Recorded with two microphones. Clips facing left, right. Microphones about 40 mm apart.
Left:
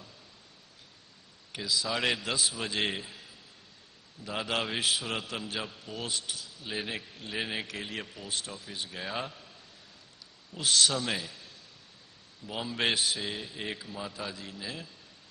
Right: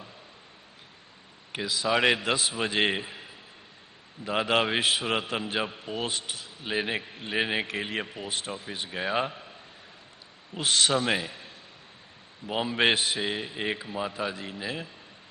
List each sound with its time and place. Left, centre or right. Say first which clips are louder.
1.5 s a man's voice: right 5 dB; right